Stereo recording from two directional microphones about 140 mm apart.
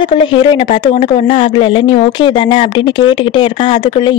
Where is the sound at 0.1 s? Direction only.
35° left (ahead or behind).